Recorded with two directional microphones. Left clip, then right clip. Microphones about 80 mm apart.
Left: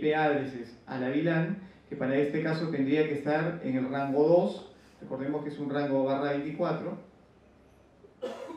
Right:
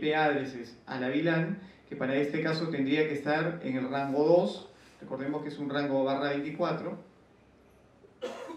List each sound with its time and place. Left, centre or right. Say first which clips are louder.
0.0 s a man's voice: left 1 dB; centre
8.2 s cough: left 1 dB; centre